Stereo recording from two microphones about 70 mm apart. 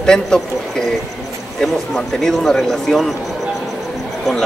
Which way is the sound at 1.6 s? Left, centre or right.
Centre.